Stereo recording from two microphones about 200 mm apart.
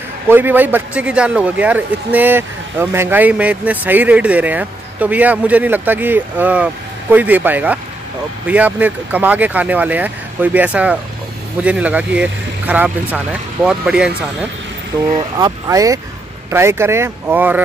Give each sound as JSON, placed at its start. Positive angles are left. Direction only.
{"t": 0.3, "sound": "a man's voice", "side_deg": -10}
{"t": 15.1, "sound": "a man's voice", "side_deg": -20}